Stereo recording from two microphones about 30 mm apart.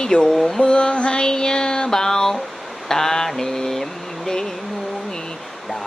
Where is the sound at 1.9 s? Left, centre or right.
Centre.